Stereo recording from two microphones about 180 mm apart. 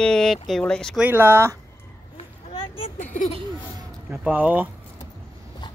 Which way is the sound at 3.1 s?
45° left (ahead or behind).